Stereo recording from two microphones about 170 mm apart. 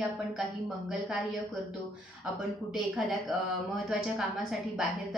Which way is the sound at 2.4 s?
Centre (ahead or behind).